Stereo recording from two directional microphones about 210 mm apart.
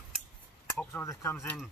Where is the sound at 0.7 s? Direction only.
10° left (ahead or behind).